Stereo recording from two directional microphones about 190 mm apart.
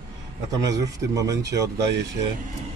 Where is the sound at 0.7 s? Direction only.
15° right (ahead or behind).